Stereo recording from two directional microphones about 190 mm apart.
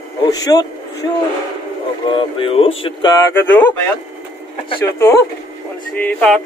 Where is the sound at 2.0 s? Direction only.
25° left (ahead or behind); by 3.8 s 10° left (ahead or behind).